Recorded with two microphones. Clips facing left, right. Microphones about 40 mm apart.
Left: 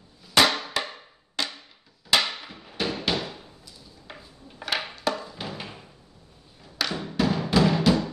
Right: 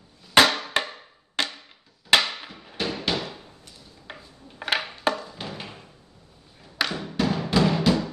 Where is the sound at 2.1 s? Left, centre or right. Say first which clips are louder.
Right 3 dB; right.